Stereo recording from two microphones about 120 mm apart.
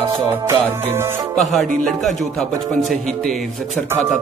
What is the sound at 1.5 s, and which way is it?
Speech, 5° left (ahead or behind).